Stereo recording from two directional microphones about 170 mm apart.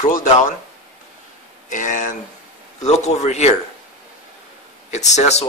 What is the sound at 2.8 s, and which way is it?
Speech, 40° left (ahead or behind).